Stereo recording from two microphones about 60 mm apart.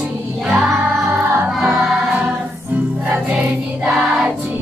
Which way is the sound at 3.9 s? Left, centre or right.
Centre.